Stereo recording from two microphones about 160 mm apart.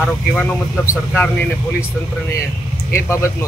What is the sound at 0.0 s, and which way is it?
A man's voice, 10° left (ahead or behind).